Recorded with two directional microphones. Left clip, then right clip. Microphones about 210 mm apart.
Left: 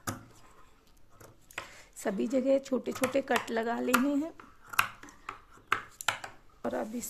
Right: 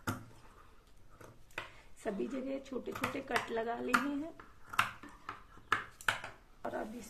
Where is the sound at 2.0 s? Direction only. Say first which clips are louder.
Left 9 dB; 60° left (ahead or behind).